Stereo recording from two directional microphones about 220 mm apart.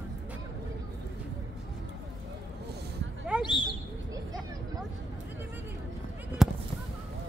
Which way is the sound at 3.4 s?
20° left (ahead or behind).